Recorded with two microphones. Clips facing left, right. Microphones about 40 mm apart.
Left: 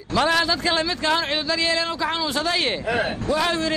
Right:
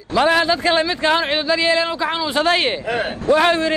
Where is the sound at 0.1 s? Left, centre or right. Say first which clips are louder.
Right 4 dB; centre.